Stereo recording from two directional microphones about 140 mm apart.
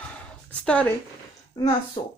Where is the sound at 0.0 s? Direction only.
10° left (ahead or behind).